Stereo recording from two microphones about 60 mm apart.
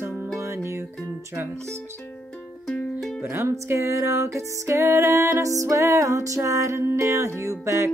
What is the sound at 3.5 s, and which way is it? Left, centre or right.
Music, right.